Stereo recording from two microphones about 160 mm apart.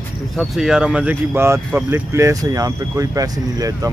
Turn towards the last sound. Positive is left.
turn(degrees=-20)  # may be behind; listen again after turning